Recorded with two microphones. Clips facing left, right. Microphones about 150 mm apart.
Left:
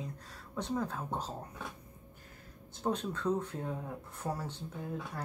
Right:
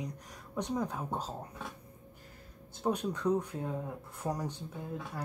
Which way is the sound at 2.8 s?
15° right (ahead or behind).